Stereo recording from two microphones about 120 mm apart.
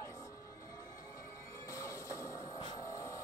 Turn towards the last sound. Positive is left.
turn(degrees=30)  # may be behind; listen again after turning